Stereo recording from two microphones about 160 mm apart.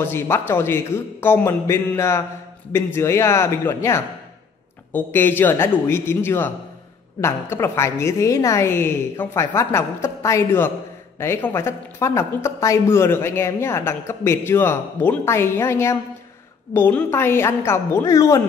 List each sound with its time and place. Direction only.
0.0 s speech: 15° left (ahead or behind)